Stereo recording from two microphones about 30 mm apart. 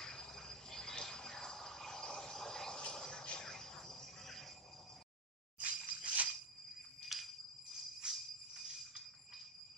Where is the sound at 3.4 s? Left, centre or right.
Centre.